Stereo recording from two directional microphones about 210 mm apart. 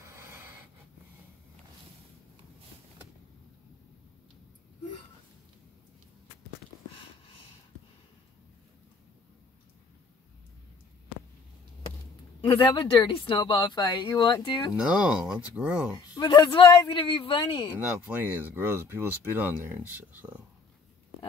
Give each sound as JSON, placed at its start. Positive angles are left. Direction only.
{"t": 0.0, "sound": "a sound", "side_deg": -10}
{"t": 12.4, "sound": "speech", "side_deg": 25}
{"t": 14.8, "sound": "speech", "side_deg": -5}
{"t": 16.0, "sound": "speech", "side_deg": 20}
{"t": 17.7, "sound": "speech", "side_deg": -10}